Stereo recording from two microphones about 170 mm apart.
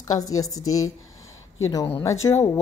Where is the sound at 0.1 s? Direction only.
20° left (ahead or behind).